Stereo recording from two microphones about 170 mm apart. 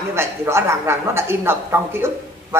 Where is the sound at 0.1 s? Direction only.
15° right (ahead or behind).